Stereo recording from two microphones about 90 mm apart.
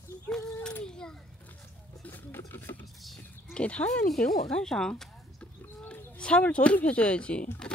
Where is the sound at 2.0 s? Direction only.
20° left (ahead or behind).